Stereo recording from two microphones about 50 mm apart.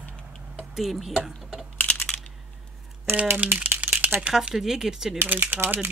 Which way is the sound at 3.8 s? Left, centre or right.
Right.